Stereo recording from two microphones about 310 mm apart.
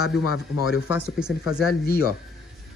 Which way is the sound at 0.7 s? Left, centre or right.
Centre.